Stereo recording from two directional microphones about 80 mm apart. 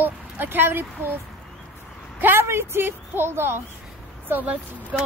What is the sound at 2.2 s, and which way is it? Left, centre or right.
A woman's voice, right.